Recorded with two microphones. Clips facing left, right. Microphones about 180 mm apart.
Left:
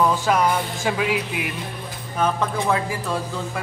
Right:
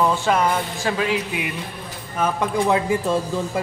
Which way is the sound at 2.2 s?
5° right (ahead or behind).